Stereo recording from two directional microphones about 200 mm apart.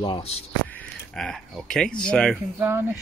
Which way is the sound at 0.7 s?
5° left (ahead or behind).